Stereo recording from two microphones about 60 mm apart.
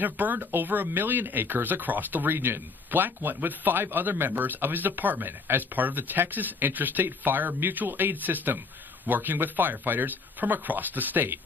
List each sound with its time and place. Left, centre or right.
0.0 s speech: right